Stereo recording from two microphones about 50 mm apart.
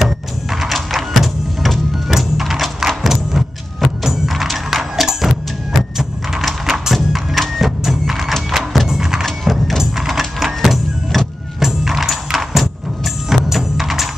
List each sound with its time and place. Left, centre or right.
0.0 s music: centre